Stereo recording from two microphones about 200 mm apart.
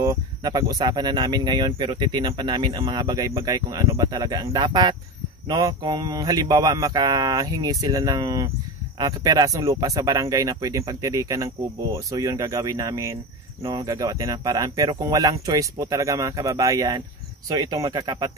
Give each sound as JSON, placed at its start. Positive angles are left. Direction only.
{"t": 0.0, "sound": "speech", "side_deg": -15}